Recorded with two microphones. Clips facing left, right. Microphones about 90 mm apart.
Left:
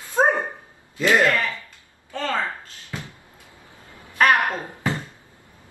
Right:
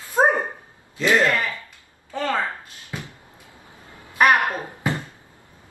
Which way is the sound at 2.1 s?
15° right (ahead or behind).